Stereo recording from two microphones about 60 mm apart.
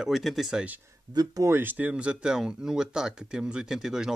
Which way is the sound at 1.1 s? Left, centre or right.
Right.